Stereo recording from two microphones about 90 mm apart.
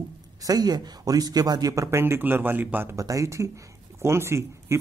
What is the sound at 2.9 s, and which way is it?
Speech, 40° right (ahead or behind).